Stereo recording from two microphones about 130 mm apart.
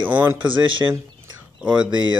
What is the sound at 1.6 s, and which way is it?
Speech, 5° right (ahead or behind).